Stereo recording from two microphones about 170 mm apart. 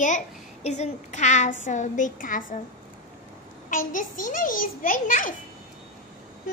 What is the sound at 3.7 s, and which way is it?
A child's voice, 50° left (ahead or behind).